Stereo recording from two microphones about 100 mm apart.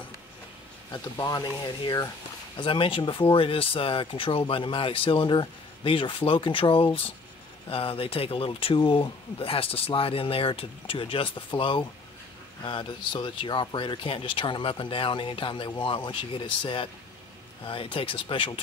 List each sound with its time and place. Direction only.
1.1 s speech: 40° left (ahead or behind)
2.5 s speech: 60° left (ahead or behind)